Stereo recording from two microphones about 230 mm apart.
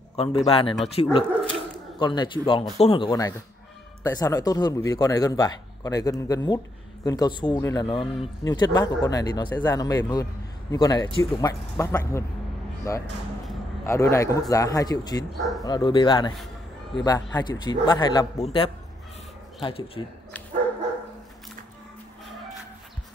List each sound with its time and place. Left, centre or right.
0.1 s a sound: left
0.5 s a man's voice: left
15.3 s speech: centre
15.6 s a man's voice: centre